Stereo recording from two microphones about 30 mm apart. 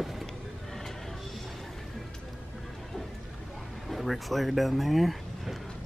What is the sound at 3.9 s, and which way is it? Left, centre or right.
Speech, centre.